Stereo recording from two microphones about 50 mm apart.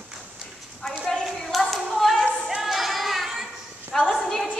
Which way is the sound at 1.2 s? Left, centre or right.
Centre.